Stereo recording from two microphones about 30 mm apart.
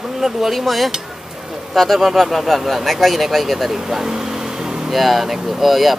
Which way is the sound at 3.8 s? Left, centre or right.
Centre.